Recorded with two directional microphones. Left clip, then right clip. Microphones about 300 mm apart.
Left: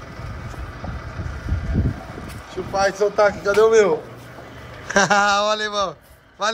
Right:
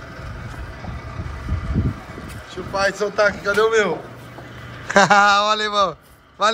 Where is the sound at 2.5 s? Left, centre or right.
Left.